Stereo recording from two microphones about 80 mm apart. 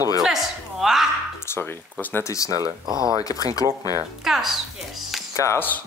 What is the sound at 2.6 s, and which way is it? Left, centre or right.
Speech, right.